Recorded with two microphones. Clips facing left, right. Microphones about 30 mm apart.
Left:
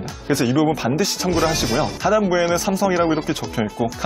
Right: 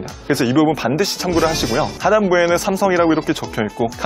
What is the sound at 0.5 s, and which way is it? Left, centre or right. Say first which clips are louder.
Speech: right 3 dB; right.